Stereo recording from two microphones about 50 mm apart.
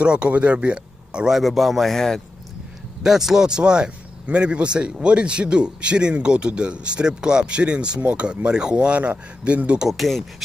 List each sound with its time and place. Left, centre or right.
0.0 s speech: right
1.3 s a man's voice: centre
3.0 s speech: centre; by 9.8 s right
9.8 s a man's voice: centre